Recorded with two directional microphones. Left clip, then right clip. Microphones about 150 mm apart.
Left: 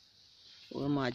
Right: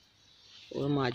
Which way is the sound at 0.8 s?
60° left (ahead or behind).